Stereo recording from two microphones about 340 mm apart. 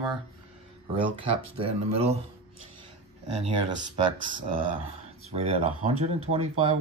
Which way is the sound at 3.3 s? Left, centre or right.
Centre.